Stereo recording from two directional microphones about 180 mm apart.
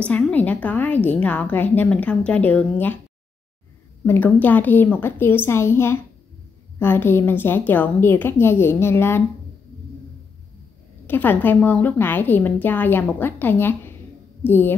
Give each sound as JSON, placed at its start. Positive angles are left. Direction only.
{"t": 0.0, "sound": "a woman's voice", "side_deg": 5}
{"t": 4.0, "sound": "a woman's voice", "side_deg": 10}
{"t": 11.1, "sound": "a woman's voice", "side_deg": 10}